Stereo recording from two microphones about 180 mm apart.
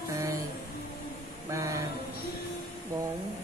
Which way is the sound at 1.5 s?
20° right (ahead or behind).